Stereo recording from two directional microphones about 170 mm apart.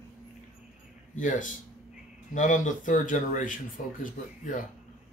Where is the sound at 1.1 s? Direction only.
50° left (ahead or behind).